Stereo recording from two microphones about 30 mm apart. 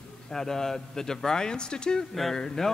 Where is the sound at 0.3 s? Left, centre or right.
Centre.